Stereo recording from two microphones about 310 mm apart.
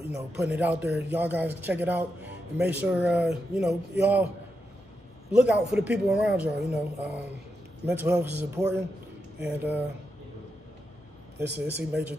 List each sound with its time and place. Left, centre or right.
0.1 s speech: centre
5.3 s a man's voice: centre
11.5 s speech: centre